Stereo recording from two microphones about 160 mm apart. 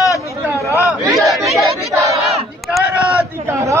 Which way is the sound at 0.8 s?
Centre (ahead or behind).